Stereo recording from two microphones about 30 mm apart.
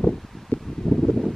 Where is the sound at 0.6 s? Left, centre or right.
Centre.